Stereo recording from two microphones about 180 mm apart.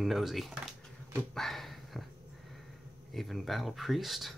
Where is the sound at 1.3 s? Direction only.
Centre (ahead or behind).